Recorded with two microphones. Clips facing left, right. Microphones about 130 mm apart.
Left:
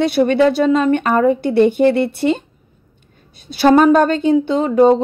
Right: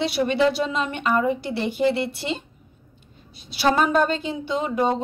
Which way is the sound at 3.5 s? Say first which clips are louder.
Left 10 dB; 55° left (ahead or behind).